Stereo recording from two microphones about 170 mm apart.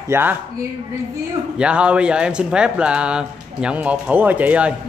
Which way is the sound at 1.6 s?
5° right (ahead or behind).